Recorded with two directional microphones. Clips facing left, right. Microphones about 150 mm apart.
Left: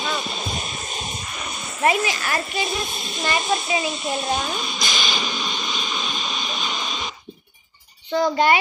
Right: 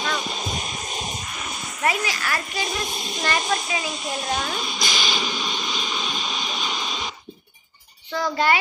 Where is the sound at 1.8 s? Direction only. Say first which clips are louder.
Left 4 dB; 25° left (ahead or behind).